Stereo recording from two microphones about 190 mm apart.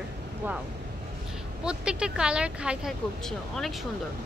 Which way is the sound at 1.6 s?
5° right (ahead or behind).